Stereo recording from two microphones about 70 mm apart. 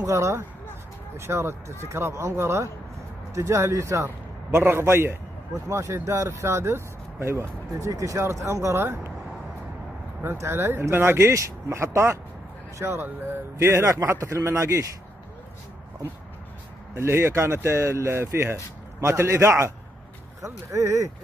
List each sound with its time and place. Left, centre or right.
0.0 s speech: right
7.7 s speech: right
10.2 s speech: right
16.9 s speech: right
20.4 s speech: right